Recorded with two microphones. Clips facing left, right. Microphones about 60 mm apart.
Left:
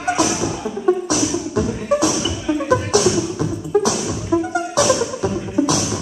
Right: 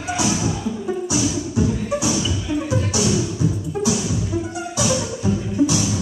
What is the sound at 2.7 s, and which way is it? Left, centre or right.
Music, left.